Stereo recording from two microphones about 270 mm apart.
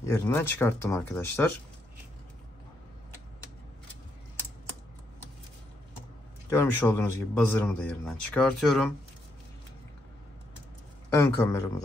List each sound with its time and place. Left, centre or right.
0.0 s speech: centre
6.5 s speech: centre
11.1 s speech: centre